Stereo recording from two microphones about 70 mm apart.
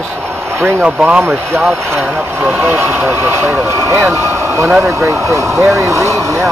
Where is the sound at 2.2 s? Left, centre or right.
Right.